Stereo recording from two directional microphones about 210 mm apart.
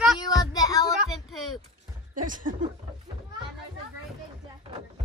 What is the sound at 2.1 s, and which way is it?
Speech, 40° right (ahead or behind).